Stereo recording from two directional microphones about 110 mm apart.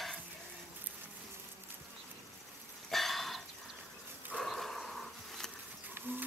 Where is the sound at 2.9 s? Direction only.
Centre (ahead or behind).